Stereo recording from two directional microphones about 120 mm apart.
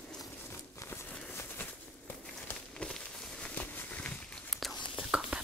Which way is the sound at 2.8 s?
5° left (ahead or behind).